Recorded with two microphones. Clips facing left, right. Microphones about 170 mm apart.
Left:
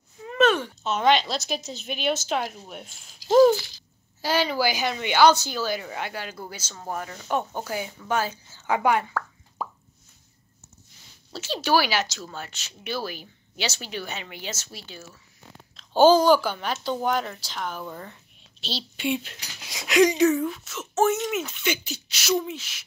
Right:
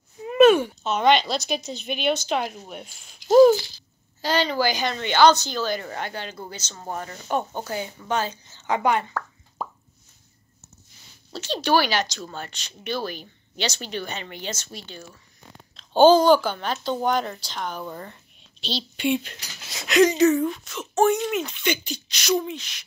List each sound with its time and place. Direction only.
0.2 s a sound: 10° right (ahead or behind)
0.8 s speech: centre (ahead or behind)
3.2 s rattle: 35° left (ahead or behind)
4.2 s speech: 5° left (ahead or behind)
11.3 s a woman's voice: 5° left (ahead or behind)